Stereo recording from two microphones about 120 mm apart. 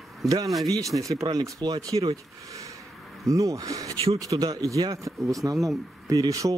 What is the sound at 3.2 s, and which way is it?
Speech, 25° right (ahead or behind).